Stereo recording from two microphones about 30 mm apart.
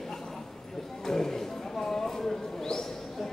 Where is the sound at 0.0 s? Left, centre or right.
Centre.